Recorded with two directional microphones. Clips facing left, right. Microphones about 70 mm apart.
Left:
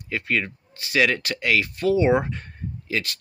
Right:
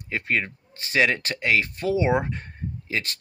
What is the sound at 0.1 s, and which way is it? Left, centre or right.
Speech, right.